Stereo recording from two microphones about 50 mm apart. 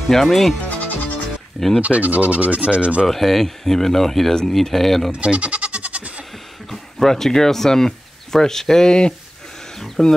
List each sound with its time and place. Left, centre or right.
0.1 s speech: centre
0.7 s music: left
1.8 s speech: right
3.1 s speech: centre
5.1 s goat: right
6.7 s speech: centre